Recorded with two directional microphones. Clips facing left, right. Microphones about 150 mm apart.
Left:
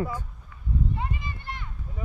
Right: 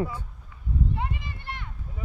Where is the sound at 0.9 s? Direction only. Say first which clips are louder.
Even; 70° right (ahead or behind).